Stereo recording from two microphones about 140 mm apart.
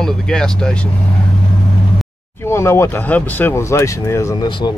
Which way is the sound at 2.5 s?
20° left (ahead or behind).